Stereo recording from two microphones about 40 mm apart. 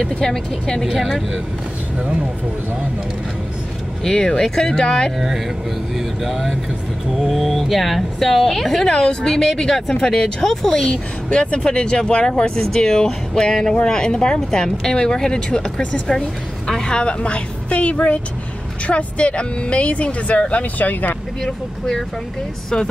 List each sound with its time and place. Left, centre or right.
0.2 s speech: centre
4.0 s speech: centre
5.9 s a woman's voice: centre
8.8 s speech: centre
10.9 s speech: left
20.8 s speech: left
21.5 s speech: centre